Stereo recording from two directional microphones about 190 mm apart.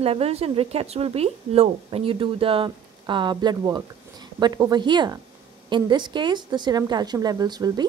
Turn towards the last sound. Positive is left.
turn(degrees=-20)  # may be behind; listen again after turning